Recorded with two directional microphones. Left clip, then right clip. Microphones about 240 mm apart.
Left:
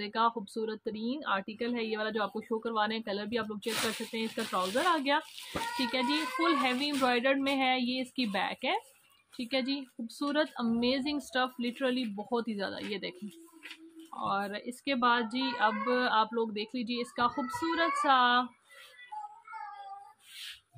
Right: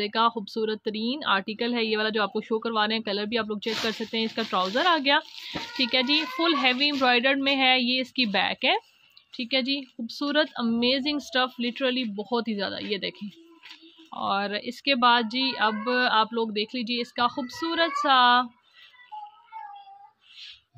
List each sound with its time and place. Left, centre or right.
0.0 s speech: right
14.1 s speech: right